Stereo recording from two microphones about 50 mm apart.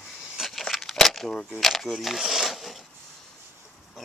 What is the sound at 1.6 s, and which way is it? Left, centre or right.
Speech, centre.